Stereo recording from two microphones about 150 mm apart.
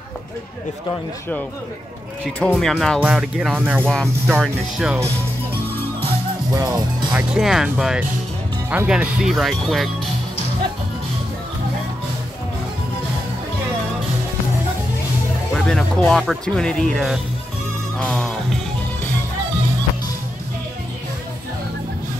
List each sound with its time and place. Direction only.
2.2 s speech: 5° left (ahead or behind); by 3.8 s 10° right (ahead or behind)
3.8 s speech: 5° left (ahead or behind)
6.5 s speech: 25° right (ahead or behind)
7.1 s speech: 5° right (ahead or behind)
15.5 s speech: 5° left (ahead or behind)
17.9 s music: 5° left (ahead or behind)